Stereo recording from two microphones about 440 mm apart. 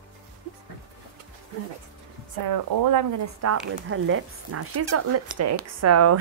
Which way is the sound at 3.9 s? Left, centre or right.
Right.